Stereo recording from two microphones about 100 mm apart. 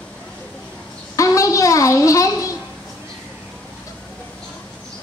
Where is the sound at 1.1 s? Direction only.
35° left (ahead or behind).